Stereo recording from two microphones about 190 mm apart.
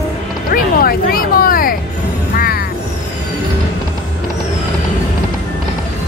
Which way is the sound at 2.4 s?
50° left (ahead or behind).